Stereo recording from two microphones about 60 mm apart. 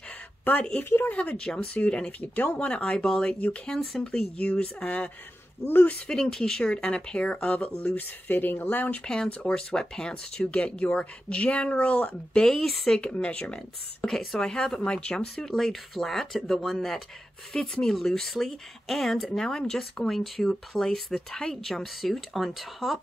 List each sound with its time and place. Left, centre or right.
1.0 s speech: left
2.7 s speech: centre
4.0 s speech: centre
5.7 s speech: left
6.0 s speech: centre; by 9.0 s left
9.0 s speech: centre
12.4 s speech: centre
13.0 s speech: centre
14.0 s speech: centre
15.5 s speech: centre